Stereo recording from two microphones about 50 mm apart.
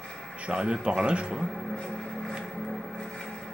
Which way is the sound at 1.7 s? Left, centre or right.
Centre.